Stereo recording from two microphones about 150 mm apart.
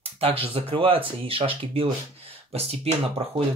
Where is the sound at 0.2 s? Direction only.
40° right (ahead or behind).